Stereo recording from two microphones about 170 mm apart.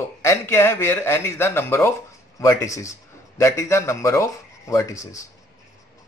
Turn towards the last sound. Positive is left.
turn(degrees=20)  # may be behind; listen again after turning